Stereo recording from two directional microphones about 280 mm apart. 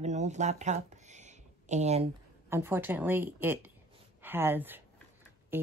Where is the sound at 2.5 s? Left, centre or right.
Centre.